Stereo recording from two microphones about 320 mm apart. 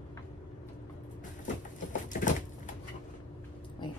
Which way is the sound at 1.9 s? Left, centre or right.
Left.